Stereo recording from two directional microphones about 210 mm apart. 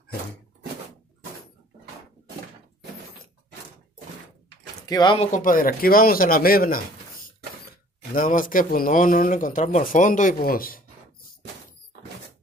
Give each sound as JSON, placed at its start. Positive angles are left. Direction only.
{"t": 4.8, "sound": "speech", "side_deg": 20}
{"t": 8.1, "sound": "speech", "side_deg": 40}